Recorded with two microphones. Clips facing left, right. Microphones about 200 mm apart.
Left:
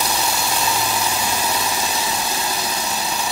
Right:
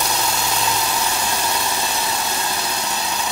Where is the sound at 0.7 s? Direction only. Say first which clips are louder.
Even; 10° left (ahead or behind).